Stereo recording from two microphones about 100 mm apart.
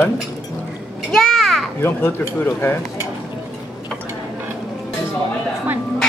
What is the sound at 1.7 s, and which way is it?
Speech, 20° left (ahead or behind).